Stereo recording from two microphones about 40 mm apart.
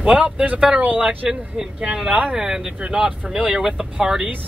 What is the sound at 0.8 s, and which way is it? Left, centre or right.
Speech, right.